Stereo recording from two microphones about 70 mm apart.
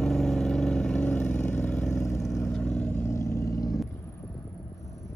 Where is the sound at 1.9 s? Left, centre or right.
Left.